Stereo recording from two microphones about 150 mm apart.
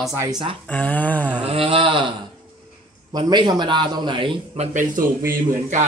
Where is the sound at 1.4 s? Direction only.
40° right (ahead or behind).